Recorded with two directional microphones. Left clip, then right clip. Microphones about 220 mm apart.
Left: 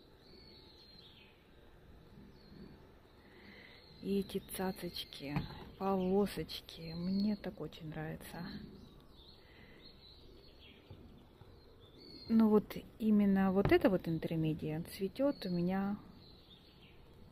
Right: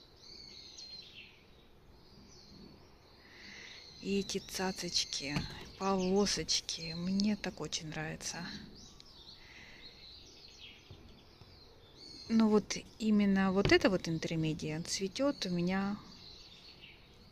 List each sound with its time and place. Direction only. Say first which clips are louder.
3.4 s speech: right 8 dB; 5° left (ahead or behind)
12.3 s speech: right 1 dB; 5° left (ahead or behind)